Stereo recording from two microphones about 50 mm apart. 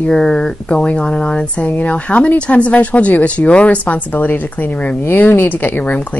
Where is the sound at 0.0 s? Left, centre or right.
Centre.